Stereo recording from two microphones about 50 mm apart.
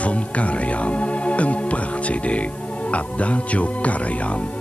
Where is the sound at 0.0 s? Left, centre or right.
Left.